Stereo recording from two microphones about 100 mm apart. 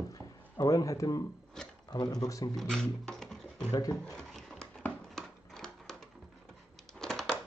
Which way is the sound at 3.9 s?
10° left (ahead or behind).